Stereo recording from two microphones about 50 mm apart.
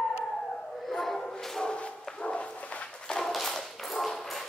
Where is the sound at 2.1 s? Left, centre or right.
Left.